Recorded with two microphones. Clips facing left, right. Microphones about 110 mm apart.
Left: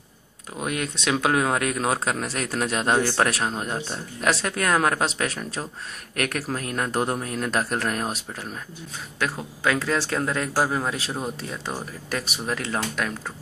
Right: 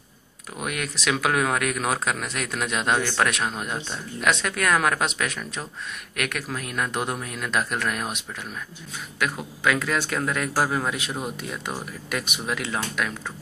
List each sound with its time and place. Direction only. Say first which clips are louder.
0.6 s speech: left 2 dB; 30° left (ahead or behind)
9.2 s speech: even; 30° left (ahead or behind)